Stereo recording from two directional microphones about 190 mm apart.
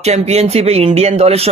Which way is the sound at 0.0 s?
35° right (ahead or behind).